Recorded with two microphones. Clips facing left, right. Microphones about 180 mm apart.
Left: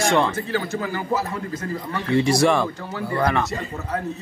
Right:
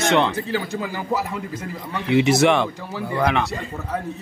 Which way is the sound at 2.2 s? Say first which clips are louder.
Right 1 dB; centre (ahead or behind).